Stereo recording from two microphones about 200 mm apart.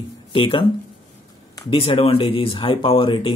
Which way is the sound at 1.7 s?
25° left (ahead or behind).